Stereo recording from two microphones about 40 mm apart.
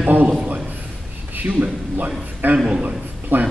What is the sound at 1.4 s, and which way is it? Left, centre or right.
Speech, right.